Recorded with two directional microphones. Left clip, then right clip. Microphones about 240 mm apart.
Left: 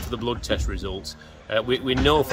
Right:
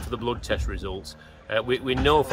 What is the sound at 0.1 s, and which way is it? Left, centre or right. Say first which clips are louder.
Speech: left 1 dB; centre.